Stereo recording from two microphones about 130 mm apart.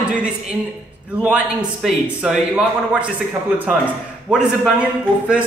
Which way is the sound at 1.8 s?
5° right (ahead or behind).